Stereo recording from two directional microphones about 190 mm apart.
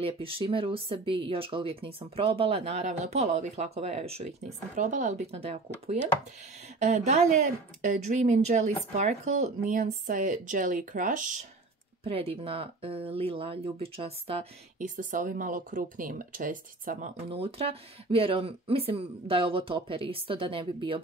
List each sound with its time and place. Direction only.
0.0 s speech: 30° right (ahead or behind)
6.8 s speech: 35° right (ahead or behind)
12.0 s speech: 30° right (ahead or behind)
15.0 s speech: 45° right (ahead or behind)
17.3 s speech: 30° right (ahead or behind)